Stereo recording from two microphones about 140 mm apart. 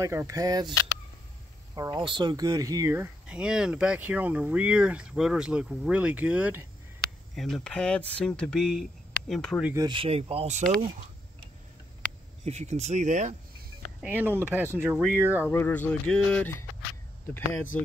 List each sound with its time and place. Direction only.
0.0 s speech: 20° right (ahead or behind)
2.0 s speech: 35° right (ahead or behind); by 6.7 s 15° right (ahead or behind)
7.0 s speech: centre (ahead or behind)
9.8 s speech: 30° right (ahead or behind)
10.0 s speech: 45° right (ahead or behind)
12.4 s speech: 50° right (ahead or behind)
14.0 s speech: 15° right (ahead or behind)
15.4 s speech: 15° left (ahead or behind)
17.7 s speech: 10° left (ahead or behind)